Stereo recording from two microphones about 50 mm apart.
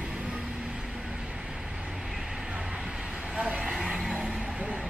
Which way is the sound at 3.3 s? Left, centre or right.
Right.